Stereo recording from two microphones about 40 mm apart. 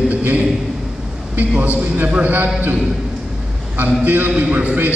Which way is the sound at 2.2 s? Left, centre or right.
Right.